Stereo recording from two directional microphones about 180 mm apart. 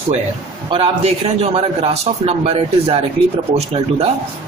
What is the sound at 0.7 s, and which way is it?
A man's voice, 35° right (ahead or behind).